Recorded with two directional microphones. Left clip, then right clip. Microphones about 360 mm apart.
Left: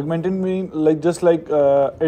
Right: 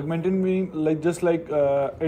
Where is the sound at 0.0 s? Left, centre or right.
Left.